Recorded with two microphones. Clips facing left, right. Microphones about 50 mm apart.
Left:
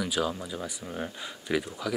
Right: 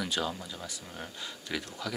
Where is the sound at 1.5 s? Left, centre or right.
Centre.